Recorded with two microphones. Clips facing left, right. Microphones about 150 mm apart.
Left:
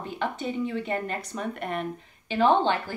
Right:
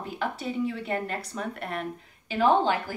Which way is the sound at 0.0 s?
5° right (ahead or behind).